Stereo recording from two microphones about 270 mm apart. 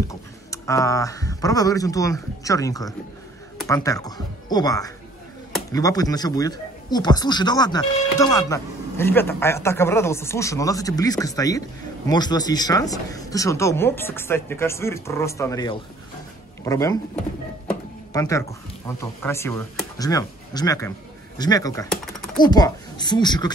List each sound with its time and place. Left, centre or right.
0.1 s speech: centre